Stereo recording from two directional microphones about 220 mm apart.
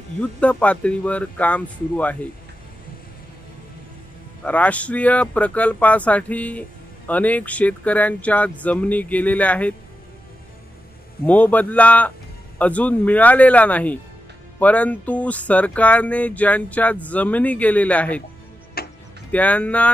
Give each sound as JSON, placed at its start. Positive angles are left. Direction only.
{"t": 0.2, "sound": "speech", "side_deg": 5}
{"t": 4.5, "sound": "speech", "side_deg": 5}
{"t": 11.2, "sound": "speech", "side_deg": 5}
{"t": 18.8, "sound": "music", "side_deg": 45}
{"t": 19.3, "sound": "speech", "side_deg": 5}